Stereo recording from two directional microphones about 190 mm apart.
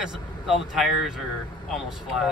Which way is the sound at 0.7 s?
Centre (ahead or behind).